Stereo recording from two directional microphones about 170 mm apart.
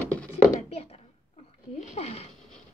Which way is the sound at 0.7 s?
35° left (ahead or behind).